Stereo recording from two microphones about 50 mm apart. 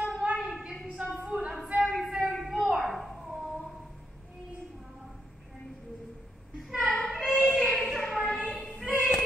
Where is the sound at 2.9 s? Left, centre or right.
Centre.